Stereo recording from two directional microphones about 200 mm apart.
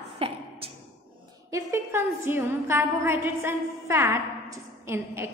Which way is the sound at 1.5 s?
15° right (ahead or behind).